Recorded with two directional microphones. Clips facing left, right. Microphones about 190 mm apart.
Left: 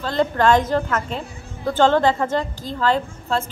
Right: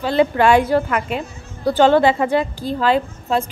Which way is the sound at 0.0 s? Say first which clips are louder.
Right 3 dB; 10° right (ahead or behind).